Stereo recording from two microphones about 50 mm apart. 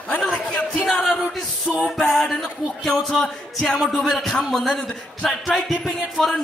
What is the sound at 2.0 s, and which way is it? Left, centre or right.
A man's voice, centre.